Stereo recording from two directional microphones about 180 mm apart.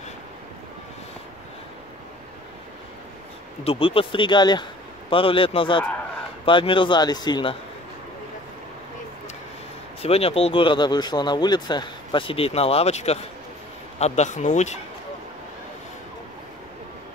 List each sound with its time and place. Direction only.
3.6 s speech: 30° left (ahead or behind)
10.0 s speech: 35° left (ahead or behind)